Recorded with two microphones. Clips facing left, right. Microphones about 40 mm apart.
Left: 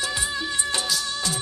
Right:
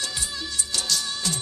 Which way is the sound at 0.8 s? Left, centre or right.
Centre.